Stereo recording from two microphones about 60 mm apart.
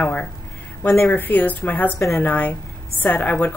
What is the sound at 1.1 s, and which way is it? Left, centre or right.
Speech, left.